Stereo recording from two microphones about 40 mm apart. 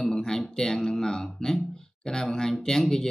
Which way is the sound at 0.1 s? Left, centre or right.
Centre.